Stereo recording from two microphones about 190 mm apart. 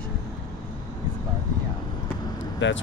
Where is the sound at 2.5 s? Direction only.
75° left (ahead or behind).